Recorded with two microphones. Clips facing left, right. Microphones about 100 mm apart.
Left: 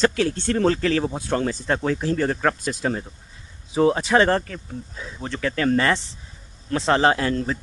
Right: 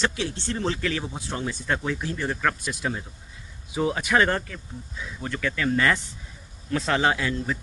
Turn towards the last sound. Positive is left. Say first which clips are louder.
# left 5 dB
turn(degrees=35)  # may be behind; listen again after turning